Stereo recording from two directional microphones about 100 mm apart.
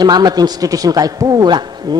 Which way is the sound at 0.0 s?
45° right (ahead or behind).